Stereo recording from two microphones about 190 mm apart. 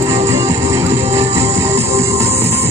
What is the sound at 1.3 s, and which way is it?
Music, 35° right (ahead or behind).